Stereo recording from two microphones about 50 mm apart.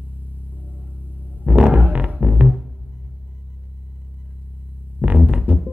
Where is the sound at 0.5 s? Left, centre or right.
Right.